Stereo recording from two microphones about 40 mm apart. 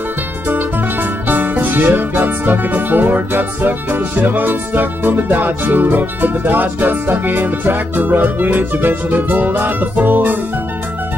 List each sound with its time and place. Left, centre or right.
1.2 s music: right